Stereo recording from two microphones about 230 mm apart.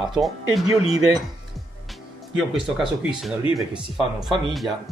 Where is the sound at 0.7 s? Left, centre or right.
Centre.